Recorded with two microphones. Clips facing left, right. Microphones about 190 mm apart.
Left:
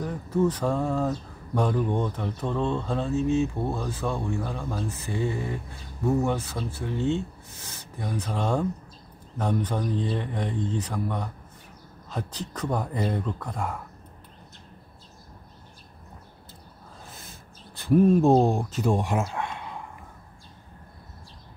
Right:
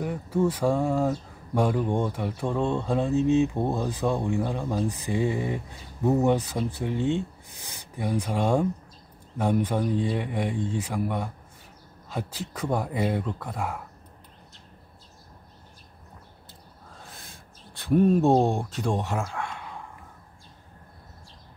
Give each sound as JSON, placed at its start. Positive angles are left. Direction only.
{"t": 0.0, "sound": "speech", "side_deg": -10}
{"t": 17.0, "sound": "speech", "side_deg": 0}